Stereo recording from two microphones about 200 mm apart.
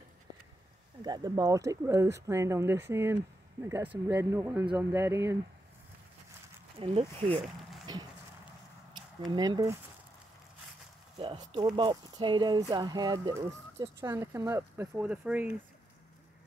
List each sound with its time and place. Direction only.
1.0 s speech: 20° right (ahead or behind)
6.8 s speech: 25° right (ahead or behind)
7.8 s clip-clop: 20° right (ahead or behind)
9.3 s speech: 20° right (ahead or behind)
11.1 s speech: 20° right (ahead or behind)